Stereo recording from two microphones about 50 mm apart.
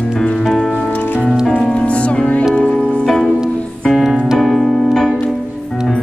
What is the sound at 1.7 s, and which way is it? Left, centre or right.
Music, left.